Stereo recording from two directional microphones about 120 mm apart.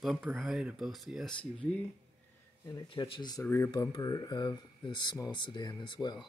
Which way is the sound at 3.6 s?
35° left (ahead or behind).